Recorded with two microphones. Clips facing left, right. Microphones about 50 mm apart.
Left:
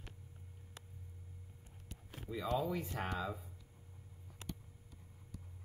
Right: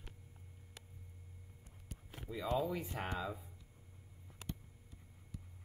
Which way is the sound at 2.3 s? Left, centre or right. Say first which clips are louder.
Even; centre.